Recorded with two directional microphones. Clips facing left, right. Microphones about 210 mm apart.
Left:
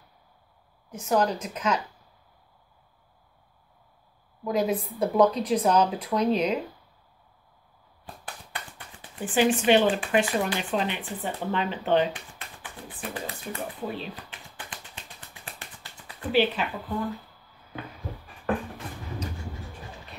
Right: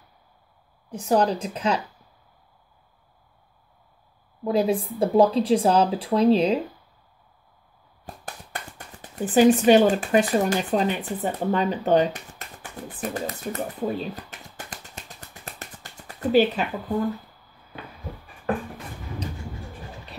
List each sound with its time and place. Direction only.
0.8 s a woman's voice: 35° right (ahead or behind)
4.5 s speech: 30° right (ahead or behind)
8.1 s a sound: 45° right (ahead or behind)
8.7 s speech: 40° right (ahead or behind)